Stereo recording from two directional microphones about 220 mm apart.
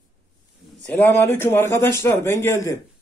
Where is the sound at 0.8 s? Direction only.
10° left (ahead or behind).